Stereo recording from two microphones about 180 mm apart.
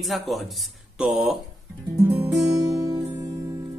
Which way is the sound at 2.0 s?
5° right (ahead or behind).